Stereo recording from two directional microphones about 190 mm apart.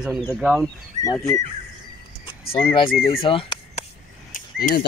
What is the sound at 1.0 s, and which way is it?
Speech, 35° right (ahead or behind).